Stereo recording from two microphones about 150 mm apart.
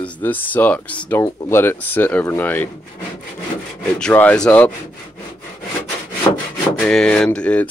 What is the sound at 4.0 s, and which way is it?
Speech, 10° left (ahead or behind).